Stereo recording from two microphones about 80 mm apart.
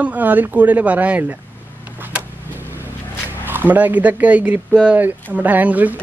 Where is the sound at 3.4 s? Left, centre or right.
Right.